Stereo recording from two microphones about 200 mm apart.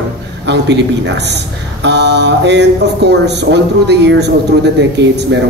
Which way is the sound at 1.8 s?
60° right (ahead or behind).